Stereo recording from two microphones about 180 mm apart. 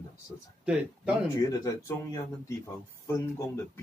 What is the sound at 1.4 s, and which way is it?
Speech, 15° left (ahead or behind).